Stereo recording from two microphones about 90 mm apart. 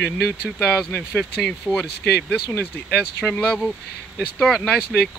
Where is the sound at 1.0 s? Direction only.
10° left (ahead or behind).